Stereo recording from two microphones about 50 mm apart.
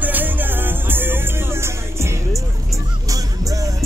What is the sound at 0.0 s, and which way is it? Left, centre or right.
Music, right.